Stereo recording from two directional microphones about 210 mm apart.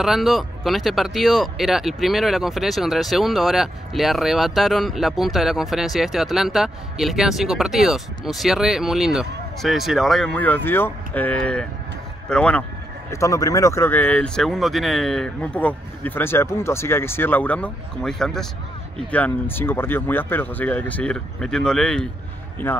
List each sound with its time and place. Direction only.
0.0 s speech: centre (ahead or behind)